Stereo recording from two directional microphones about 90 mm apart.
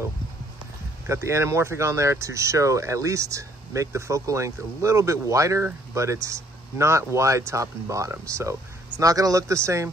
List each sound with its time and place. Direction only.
1.0 s speech: 30° right (ahead or behind)